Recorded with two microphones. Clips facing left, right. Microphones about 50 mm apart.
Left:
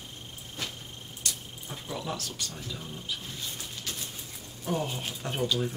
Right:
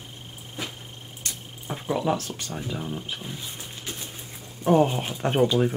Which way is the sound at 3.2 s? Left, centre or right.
Centre.